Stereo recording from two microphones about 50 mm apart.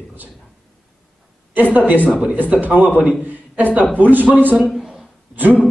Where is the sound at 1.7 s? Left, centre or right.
Right.